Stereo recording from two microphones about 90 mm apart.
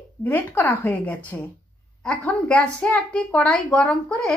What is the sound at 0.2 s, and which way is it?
A woman's voice, 20° left (ahead or behind).